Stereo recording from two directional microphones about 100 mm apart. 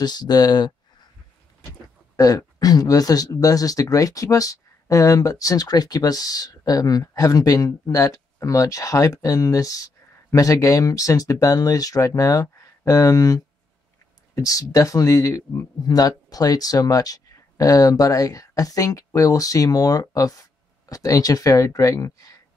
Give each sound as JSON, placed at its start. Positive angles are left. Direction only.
{"t": 0.0, "sound": "speech", "side_deg": 45}